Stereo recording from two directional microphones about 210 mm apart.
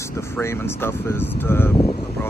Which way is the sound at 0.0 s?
10° left (ahead or behind).